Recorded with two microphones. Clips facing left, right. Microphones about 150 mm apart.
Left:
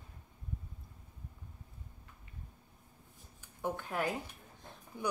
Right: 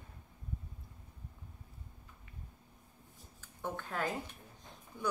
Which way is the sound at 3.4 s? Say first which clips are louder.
Left 3 dB; 15° left (ahead or behind).